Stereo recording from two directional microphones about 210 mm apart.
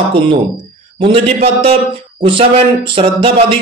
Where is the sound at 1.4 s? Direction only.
25° right (ahead or behind).